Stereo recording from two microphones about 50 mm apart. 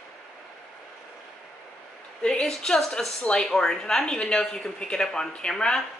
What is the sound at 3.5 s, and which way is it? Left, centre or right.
Speech, centre.